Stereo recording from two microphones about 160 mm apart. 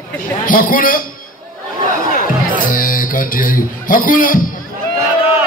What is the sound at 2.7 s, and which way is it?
A man's voice, 60° left (ahead or behind).